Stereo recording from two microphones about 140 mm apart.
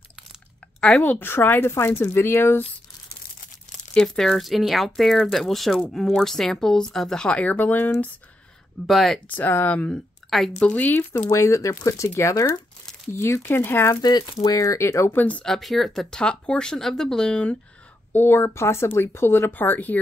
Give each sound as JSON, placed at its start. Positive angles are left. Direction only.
{"t": 0.7, "sound": "speech", "side_deg": 5}
{"t": 3.9, "sound": "speech", "side_deg": 5}
{"t": 8.8, "sound": "speech", "side_deg": 0}
{"t": 9.3, "sound": "speech", "side_deg": 15}
{"t": 14.0, "sound": "speech", "side_deg": 30}